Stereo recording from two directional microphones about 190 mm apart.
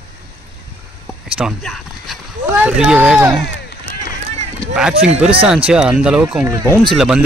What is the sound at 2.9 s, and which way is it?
Speech, 5° right (ahead or behind).